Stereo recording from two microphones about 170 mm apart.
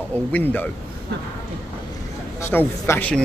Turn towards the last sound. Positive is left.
turn(degrees=10)  # may be behind; listen again after turning